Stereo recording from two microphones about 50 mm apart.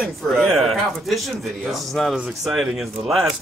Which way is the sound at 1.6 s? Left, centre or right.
Centre.